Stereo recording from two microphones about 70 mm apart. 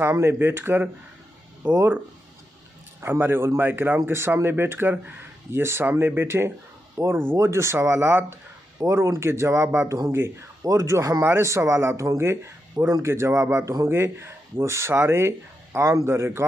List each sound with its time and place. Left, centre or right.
0.0 s speech: right
3.0 s speech: right
7.3 s speech: right